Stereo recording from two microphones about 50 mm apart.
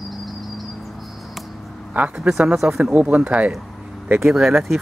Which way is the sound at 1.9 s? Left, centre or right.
Right.